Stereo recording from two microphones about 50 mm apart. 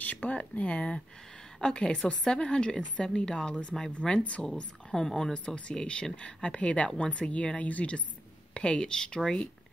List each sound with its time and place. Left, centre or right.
0.0 s a woman's voice: left
4.9 s a woman's voice: centre